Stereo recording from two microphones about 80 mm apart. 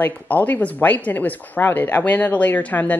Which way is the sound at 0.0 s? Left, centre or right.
Left.